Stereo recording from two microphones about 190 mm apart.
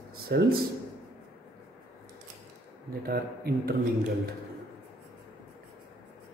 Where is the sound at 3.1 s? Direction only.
55° right (ahead or behind).